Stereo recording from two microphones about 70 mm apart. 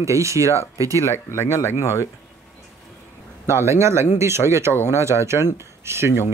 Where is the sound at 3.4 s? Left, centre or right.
Right.